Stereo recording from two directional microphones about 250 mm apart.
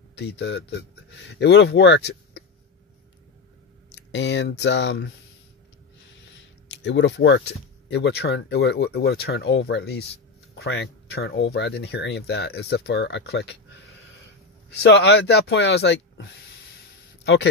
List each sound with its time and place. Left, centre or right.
0.1 s speech: left
3.9 s speech: left
6.7 s speech: left